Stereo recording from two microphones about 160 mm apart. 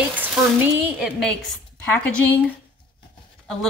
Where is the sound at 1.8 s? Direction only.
10° left (ahead or behind).